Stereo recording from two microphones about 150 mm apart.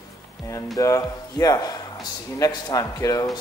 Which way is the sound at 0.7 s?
20° left (ahead or behind).